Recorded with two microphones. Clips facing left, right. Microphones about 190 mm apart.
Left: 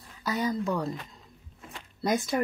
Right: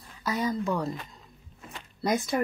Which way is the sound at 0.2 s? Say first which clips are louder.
Even; centre (ahead or behind).